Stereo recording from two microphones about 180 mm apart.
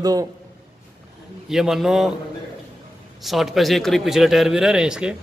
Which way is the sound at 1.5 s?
Centre (ahead or behind).